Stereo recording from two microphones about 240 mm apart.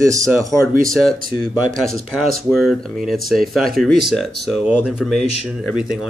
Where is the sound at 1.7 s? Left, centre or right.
Centre.